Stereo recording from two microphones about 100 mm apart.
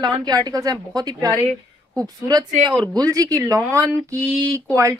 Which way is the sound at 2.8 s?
40° right (ahead or behind).